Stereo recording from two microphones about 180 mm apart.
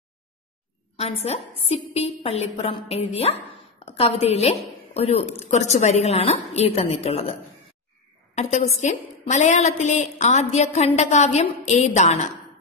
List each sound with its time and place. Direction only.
0.9 s a woman's voice: 35° left (ahead or behind)
8.4 s a woman's voice: 40° left (ahead or behind)